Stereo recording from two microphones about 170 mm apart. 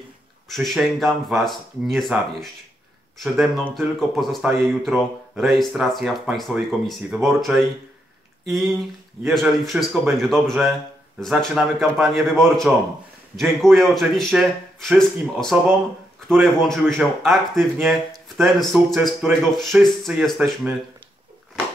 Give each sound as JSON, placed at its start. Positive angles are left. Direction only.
{"t": 0.5, "sound": "speech", "side_deg": 0}
{"t": 16.3, "sound": "speech", "side_deg": 5}